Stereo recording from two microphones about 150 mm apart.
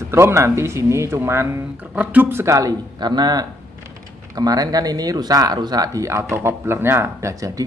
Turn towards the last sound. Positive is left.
turn(degrees=-20)  # may be behind; listen again after turning